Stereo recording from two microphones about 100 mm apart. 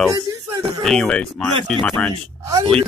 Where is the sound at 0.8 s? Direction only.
5° left (ahead or behind).